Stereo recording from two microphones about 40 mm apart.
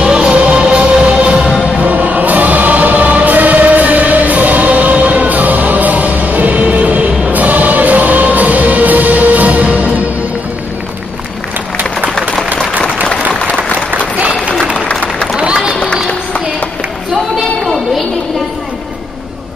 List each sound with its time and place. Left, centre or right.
0.0 s music: right
1.8 s music: right
15.3 s run: right
16.1 s a sound: left